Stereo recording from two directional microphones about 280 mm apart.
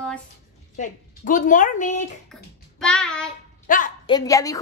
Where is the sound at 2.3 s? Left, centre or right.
Centre.